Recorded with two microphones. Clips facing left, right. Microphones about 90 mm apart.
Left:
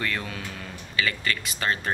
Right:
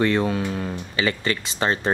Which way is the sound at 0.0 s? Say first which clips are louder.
Right 11 dB; 30° right (ahead or behind).